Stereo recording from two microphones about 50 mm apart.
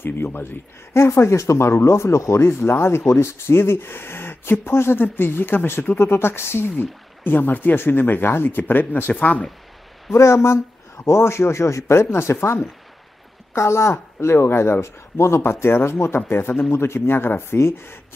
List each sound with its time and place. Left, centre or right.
0.0 s speech: left
0.9 s speech: left
2.4 s speech: left
9.1 s speech: left
10.1 s speech: left
13.6 s speech: left